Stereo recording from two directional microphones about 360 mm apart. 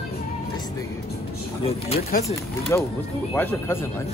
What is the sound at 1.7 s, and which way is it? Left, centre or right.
Speech, centre.